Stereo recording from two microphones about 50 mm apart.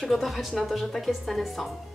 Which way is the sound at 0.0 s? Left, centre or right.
Centre.